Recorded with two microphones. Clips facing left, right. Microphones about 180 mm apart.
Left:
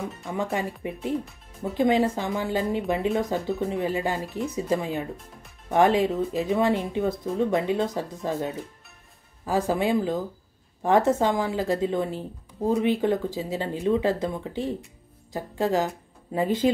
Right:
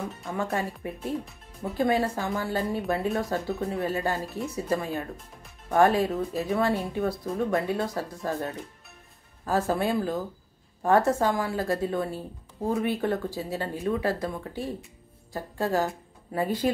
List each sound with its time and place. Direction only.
0.3 s a woman's voice: 15° left (ahead or behind)